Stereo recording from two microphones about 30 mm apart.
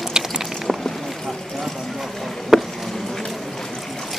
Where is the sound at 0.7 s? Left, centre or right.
Centre.